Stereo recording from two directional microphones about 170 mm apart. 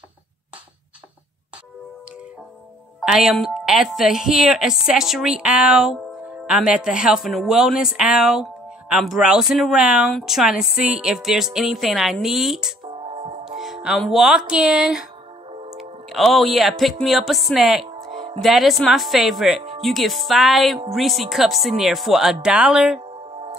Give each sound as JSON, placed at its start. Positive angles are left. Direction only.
{"t": 3.0, "sound": "speech", "side_deg": -5}
{"t": 13.1, "sound": "music", "side_deg": -40}
{"t": 13.5, "sound": "music", "side_deg": 0}
{"t": 13.8, "sound": "speech", "side_deg": 0}